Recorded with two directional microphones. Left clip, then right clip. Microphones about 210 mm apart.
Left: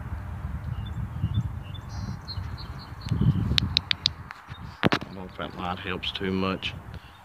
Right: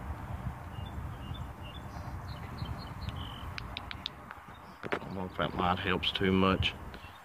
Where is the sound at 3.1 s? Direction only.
40° left (ahead or behind).